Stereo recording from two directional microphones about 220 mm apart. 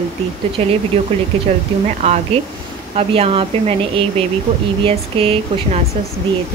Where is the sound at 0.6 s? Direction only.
30° right (ahead or behind).